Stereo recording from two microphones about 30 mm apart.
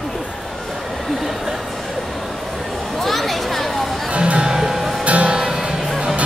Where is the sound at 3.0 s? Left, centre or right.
Centre.